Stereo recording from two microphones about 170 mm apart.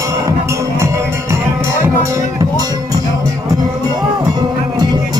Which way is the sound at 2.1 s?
20° right (ahead or behind).